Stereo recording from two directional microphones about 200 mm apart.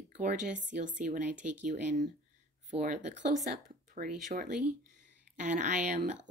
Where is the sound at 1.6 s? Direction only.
40° right (ahead or behind).